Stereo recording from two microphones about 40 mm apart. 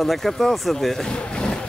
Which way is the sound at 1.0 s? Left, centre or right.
Centre.